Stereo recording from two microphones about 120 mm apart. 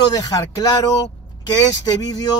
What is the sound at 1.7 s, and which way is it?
Speech, 35° left (ahead or behind).